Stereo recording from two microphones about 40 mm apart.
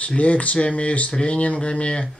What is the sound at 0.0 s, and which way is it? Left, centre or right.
Speech, left.